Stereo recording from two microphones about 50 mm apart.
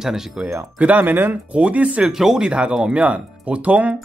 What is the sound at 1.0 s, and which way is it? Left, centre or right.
Speech, right.